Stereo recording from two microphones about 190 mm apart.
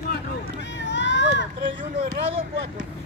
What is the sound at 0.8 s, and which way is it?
Run, 70° left (ahead or behind).